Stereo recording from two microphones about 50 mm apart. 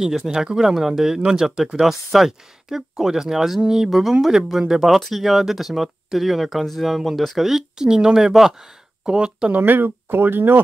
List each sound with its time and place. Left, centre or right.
0.0 s speech: centre
9.5 s speech: right